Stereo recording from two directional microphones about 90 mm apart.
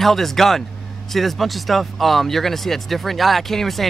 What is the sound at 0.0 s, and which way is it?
Speech, 5° left (ahead or behind).